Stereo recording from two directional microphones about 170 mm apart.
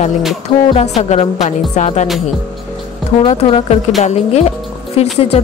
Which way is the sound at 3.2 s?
30° left (ahead or behind).